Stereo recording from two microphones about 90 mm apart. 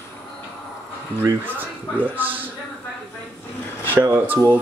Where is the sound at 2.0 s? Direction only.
20° right (ahead or behind).